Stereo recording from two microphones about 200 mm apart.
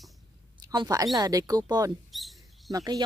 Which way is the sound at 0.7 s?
15° right (ahead or behind).